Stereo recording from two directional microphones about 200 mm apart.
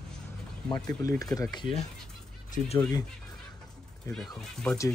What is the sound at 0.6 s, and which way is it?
Speech, 20° left (ahead or behind).